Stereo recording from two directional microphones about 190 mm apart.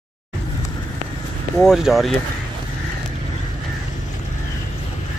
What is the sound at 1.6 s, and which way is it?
Speech, centre (ahead or behind).